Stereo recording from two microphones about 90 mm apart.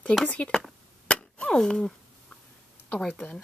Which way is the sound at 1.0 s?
10° left (ahead or behind).